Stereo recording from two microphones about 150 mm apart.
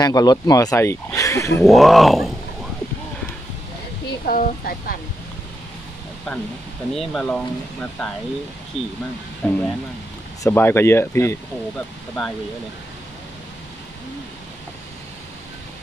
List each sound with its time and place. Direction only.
0.0 s speech: 25° left (ahead or behind)
1.6 s speech: centre (ahead or behind)
4.3 s speech: 70° left (ahead or behind)
6.9 s speech: 5° left (ahead or behind)
8.7 s speech: 40° left (ahead or behind)
9.4 s speech: 10° left (ahead or behind)